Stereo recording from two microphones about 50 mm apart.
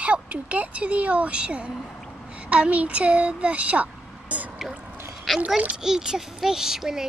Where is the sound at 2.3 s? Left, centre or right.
Right.